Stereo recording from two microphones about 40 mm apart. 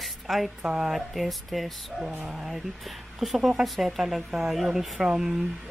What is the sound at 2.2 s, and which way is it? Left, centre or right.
Speech, centre.